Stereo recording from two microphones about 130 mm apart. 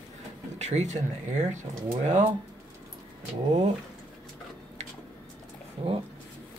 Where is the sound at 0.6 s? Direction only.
60° right (ahead or behind).